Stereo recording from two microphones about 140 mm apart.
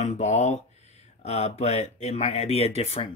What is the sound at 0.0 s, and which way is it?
Speech, 55° left (ahead or behind).